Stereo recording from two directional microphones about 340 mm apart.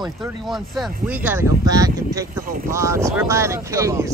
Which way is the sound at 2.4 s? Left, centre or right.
Right.